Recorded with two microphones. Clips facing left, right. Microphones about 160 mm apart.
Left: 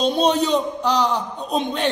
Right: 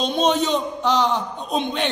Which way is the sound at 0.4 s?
35° left (ahead or behind).